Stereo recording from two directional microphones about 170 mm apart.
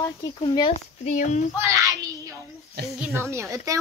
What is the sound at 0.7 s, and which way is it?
Speech, 45° left (ahead or behind).